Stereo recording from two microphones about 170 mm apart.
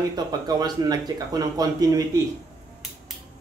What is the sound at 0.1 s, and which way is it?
Speech, 25° right (ahead or behind).